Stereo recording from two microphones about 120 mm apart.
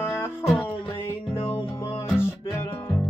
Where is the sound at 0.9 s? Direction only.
45° left (ahead or behind).